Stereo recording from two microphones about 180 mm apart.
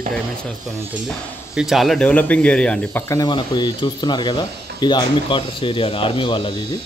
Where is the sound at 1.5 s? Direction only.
Centre (ahead or behind).